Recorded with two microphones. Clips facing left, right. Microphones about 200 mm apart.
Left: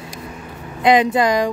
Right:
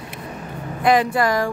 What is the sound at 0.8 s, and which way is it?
Speech, 20° left (ahead or behind).